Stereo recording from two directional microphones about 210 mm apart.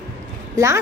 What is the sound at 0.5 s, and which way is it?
Speech, 15° right (ahead or behind).